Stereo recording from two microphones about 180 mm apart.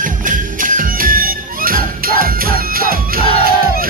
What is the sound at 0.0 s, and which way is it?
Music, 50° right (ahead or behind).